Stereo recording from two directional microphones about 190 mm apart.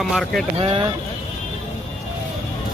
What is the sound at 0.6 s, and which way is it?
Speech, 25° right (ahead or behind).